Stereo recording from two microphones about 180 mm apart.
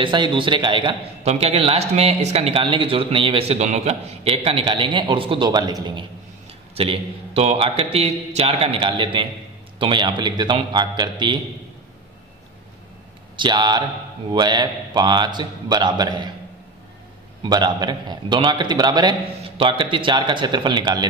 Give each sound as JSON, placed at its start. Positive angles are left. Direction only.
{"t": 0.0, "sound": "a man's voice", "side_deg": -25}
{"t": 6.7, "sound": "a man's voice", "side_deg": -35}
{"t": 13.4, "sound": "a man's voice", "side_deg": -25}
{"t": 17.4, "sound": "a man's voice", "side_deg": -25}